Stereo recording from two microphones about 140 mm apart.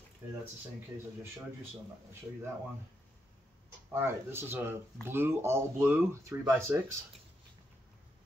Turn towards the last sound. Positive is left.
turn(degrees=-20)  # may be behind; listen again after turning